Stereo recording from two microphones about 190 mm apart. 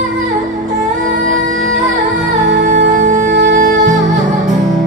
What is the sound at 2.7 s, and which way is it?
Music, 40° right (ahead or behind).